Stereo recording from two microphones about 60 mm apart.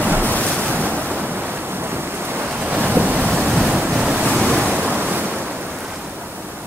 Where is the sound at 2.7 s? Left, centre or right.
Right.